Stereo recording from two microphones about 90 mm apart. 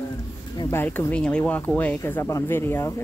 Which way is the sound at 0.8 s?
15° left (ahead or behind).